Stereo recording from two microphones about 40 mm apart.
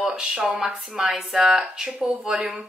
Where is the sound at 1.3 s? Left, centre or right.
Centre.